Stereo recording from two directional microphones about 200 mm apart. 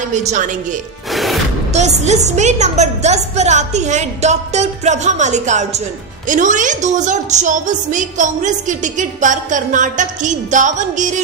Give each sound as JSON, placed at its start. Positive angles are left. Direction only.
{"t": 0.1, "sound": "a woman's voice", "side_deg": -35}
{"t": 1.1, "sound": "music", "side_deg": 0}
{"t": 1.7, "sound": "a woman's voice", "side_deg": -35}